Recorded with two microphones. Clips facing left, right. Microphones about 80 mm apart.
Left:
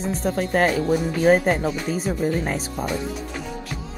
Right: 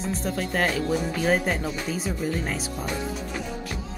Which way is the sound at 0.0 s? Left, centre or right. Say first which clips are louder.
Left 4 dB; left.